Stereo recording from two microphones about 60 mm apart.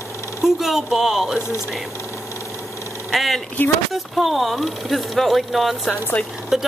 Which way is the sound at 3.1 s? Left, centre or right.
Centre.